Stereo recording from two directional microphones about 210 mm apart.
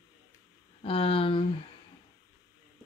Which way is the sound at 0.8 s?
25° left (ahead or behind).